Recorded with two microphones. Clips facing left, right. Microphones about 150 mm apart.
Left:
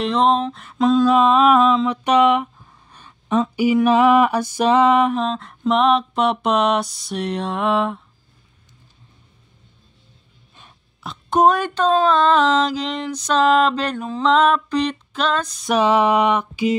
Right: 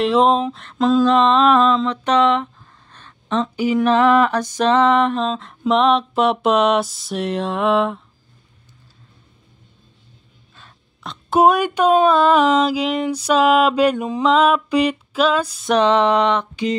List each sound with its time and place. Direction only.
0.0 s mantra: centre (ahead or behind)
5.3 s a sound: centre (ahead or behind)
11.0 s speech: centre (ahead or behind)
15.7 s mantra: 5° left (ahead or behind)